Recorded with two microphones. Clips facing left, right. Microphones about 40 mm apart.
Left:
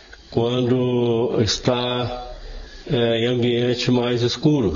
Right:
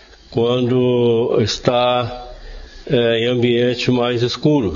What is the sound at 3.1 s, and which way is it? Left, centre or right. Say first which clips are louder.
Speech: right 3 dB; right.